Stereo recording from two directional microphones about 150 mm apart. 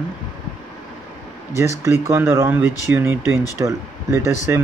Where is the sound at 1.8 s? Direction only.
20° right (ahead or behind).